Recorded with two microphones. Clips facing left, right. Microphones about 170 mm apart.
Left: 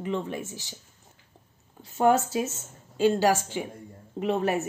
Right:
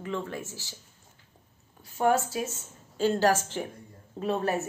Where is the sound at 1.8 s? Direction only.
25° left (ahead or behind).